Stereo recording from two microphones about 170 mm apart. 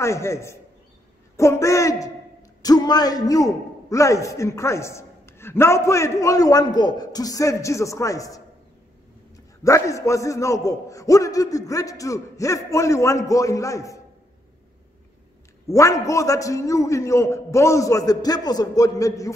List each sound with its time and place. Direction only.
0.0 s a man's voice: 15° left (ahead or behind)
9.6 s a man's voice: 20° left (ahead or behind)
15.6 s a man's voice: 20° left (ahead or behind)